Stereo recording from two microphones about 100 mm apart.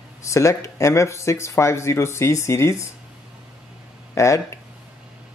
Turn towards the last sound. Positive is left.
turn(degrees=30)  # may be behind; listen again after turning